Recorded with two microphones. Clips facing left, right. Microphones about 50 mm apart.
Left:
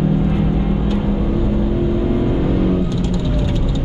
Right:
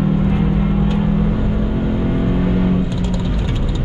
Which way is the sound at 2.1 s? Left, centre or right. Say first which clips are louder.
Left 1 dB; centre.